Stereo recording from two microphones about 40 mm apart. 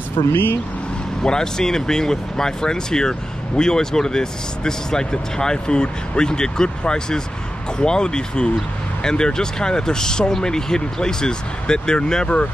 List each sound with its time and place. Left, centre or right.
0.3 s speech: left
1.2 s speech: centre